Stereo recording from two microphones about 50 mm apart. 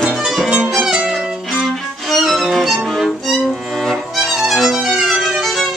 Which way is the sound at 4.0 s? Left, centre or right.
Centre.